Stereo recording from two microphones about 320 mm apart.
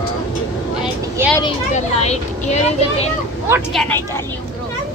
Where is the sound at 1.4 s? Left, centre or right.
Centre.